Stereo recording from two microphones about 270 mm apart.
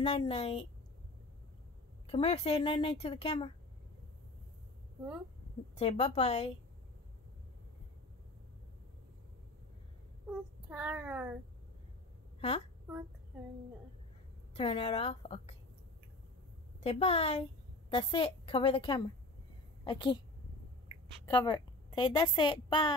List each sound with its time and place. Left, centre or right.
0.0 s speech: left
2.0 s speech: left
5.8 s speech: left
10.7 s speech: centre
12.4 s a woman's voice: left
14.5 s speech: left
16.8 s a woman's voice: left
21.3 s a woman's voice: centre